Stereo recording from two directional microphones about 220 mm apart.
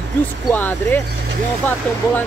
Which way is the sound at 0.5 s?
10° left (ahead or behind).